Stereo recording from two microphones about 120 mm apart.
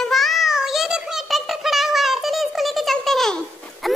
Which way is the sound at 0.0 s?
Centre (ahead or behind).